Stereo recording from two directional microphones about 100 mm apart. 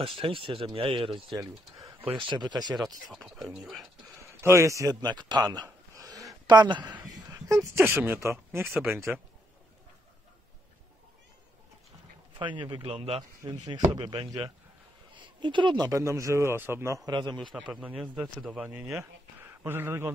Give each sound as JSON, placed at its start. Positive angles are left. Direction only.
{"t": 0.0, "sound": "speech", "side_deg": -60}
{"t": 1.3, "sound": "speech", "side_deg": -35}
{"t": 2.1, "sound": "speech", "side_deg": -50}
{"t": 3.1, "sound": "a man's voice", "side_deg": -5}
{"t": 4.2, "sound": "a sound", "side_deg": -25}
{"t": 7.4, "sound": "a man's voice", "side_deg": -25}
{"t": 12.4, "sound": "speech", "side_deg": -55}
{"t": 12.8, "sound": "speech", "side_deg": -75}
{"t": 13.5, "sound": "speech", "side_deg": -50}
{"t": 15.9, "sound": "a man's voice", "side_deg": -30}
{"t": 17.1, "sound": "speech", "side_deg": -45}
{"t": 17.8, "sound": "a man's voice", "side_deg": -5}
{"t": 18.6, "sound": "speech", "side_deg": -15}